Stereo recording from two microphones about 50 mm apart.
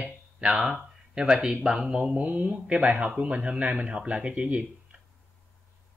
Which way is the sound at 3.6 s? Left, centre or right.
Right.